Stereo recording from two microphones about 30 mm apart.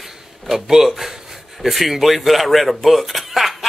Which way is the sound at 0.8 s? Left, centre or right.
Centre.